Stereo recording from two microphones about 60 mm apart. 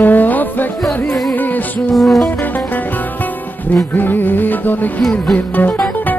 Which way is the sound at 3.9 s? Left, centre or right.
Left.